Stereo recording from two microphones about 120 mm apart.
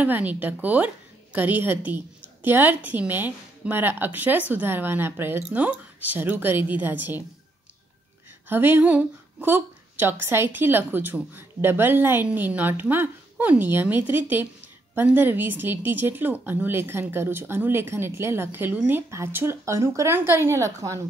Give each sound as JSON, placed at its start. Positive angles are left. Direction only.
{"t": 0.0, "sound": "a woman's voice", "side_deg": -15}
{"t": 8.5, "sound": "a woman's voice", "side_deg": -15}